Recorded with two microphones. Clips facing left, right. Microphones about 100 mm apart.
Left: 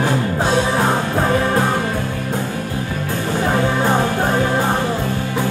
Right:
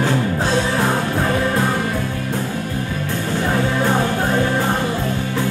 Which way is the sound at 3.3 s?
20° left (ahead or behind).